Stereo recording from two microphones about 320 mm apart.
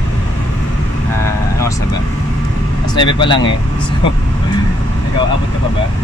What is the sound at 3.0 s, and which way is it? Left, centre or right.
Speech, centre.